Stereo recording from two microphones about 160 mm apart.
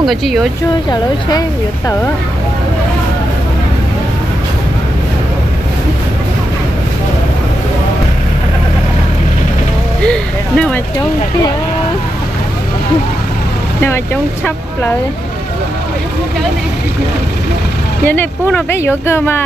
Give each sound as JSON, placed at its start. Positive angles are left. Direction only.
{"t": 0.0, "sound": "speech", "side_deg": 0}
{"t": 18.0, "sound": "speech", "side_deg": 10}